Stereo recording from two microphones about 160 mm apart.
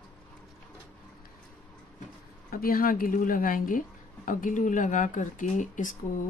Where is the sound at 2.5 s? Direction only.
65° left (ahead or behind).